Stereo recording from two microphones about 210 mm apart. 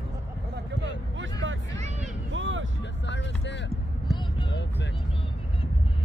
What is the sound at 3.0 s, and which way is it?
Music, 55° left (ahead or behind).